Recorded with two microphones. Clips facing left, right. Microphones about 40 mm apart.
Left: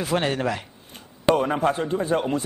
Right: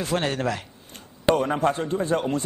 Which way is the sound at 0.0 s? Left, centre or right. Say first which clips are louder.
Left 1 dB; centre.